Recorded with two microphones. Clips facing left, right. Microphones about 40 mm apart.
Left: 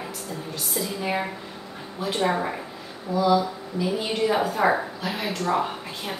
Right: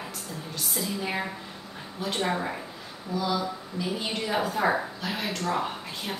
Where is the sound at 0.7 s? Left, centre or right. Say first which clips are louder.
Left 4 dB; centre.